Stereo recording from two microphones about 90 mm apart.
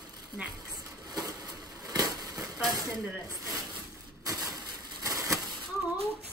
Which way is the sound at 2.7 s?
45° right (ahead or behind).